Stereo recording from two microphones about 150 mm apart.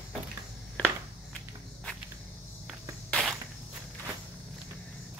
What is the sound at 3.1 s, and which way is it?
Insect, 5° left (ahead or behind).